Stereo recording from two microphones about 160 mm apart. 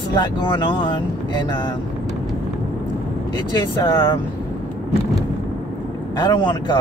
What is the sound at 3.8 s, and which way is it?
Speech, 30° left (ahead or behind).